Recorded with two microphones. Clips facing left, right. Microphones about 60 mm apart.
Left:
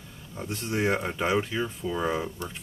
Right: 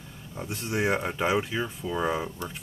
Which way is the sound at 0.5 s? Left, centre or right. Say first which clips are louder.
Even; centre.